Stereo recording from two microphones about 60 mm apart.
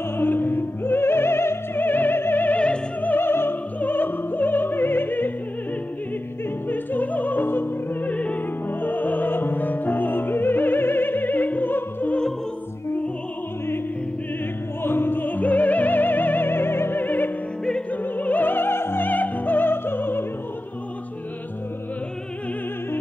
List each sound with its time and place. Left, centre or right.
0.2 s music: left
6.7 s opera: left
14.8 s music: left